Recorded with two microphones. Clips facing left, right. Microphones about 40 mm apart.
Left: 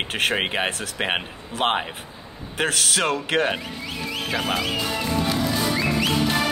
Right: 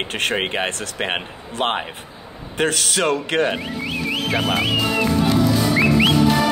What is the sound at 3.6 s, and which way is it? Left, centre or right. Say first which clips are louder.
Speech: right 6 dB; right.